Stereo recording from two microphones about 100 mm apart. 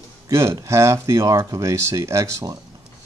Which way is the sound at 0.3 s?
30° right (ahead or behind).